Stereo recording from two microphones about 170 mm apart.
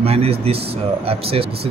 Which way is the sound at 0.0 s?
35° right (ahead or behind).